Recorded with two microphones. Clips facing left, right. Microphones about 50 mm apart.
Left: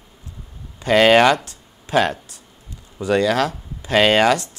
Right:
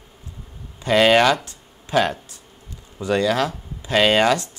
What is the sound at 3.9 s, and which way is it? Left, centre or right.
Speech, left.